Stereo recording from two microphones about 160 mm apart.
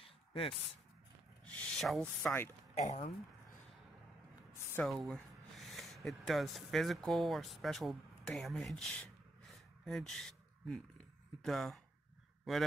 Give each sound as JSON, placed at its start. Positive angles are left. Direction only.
{"t": 0.0, "sound": "a sound", "side_deg": 35}
{"t": 1.4, "sound": "speech", "side_deg": 5}
{"t": 2.7, "sound": "speech", "side_deg": 40}
{"t": 4.8, "sound": "speech", "side_deg": 0}